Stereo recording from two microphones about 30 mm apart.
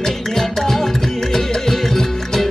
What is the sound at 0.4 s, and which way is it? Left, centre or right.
Music, centre.